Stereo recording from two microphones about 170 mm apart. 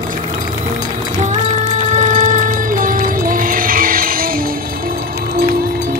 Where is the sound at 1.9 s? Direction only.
45° right (ahead or behind).